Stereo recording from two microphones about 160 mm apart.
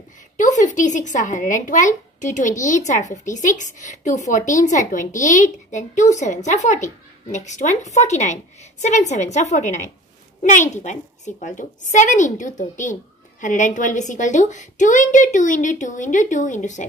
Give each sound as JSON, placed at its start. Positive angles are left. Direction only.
{"t": 0.4, "sound": "a woman's voice", "side_deg": 50}